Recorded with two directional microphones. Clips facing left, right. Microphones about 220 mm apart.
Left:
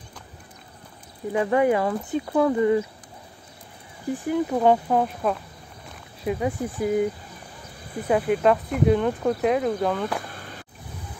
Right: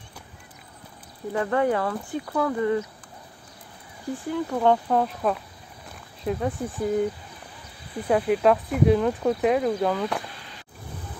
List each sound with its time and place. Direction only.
1.3 s speech: 15° left (ahead or behind)
4.3 s speech: 15° left (ahead or behind)
8.1 s speech: centre (ahead or behind)
10.3 s a sound: 50° left (ahead or behind)